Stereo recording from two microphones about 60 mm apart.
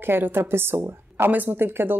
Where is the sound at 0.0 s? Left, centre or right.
Right.